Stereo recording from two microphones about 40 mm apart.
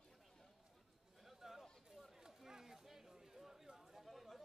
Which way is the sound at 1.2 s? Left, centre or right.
Centre.